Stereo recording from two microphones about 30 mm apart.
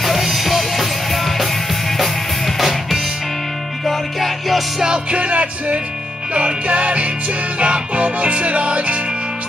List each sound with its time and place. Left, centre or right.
0.0 s music: centre
4.8 s music: right